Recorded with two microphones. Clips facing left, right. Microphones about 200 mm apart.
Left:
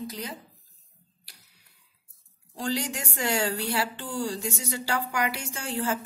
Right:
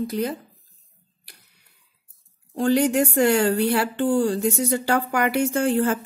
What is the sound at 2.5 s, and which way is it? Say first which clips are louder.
A woman's voice: right 11 dB; 60° right (ahead or behind).